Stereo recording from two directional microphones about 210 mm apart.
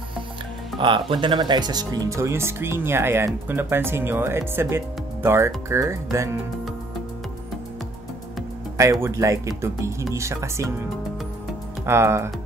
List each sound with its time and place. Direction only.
0.7 s speech: 25° right (ahead or behind)
9.0 s speech: 15° right (ahead or behind)
11.8 s speech: 10° right (ahead or behind)